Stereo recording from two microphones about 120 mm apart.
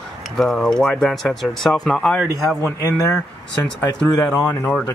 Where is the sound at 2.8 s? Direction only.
25° left (ahead or behind).